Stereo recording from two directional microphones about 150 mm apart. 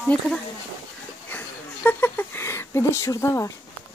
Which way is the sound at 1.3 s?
10° left (ahead or behind).